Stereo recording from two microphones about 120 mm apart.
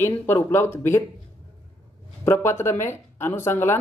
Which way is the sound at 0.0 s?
20° left (ahead or behind).